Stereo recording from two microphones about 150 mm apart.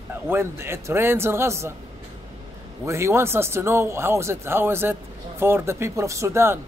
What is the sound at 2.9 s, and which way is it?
A man's voice, 20° right (ahead or behind).